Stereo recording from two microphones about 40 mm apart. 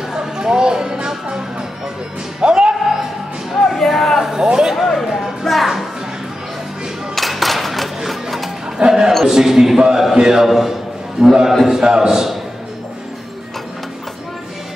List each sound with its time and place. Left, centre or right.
0.1 s music: centre
2.4 s music: right
3.6 s music: centre
4.2 s a sound: centre
4.7 s music: centre
7.2 s a sound: centre
8.1 s music: centre
8.7 s a sound: centre
9.2 s a man's voice: centre
10.4 s a man's voice: centre